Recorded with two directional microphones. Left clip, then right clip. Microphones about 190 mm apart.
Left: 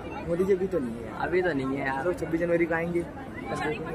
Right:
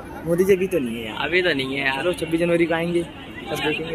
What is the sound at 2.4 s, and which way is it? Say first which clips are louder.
Speech: right 6 dB; 35° right (ahead or behind).